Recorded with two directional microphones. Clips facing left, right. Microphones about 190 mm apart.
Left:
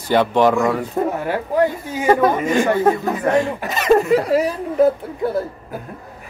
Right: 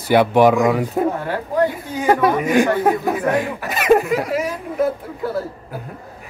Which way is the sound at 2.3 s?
15° right (ahead or behind).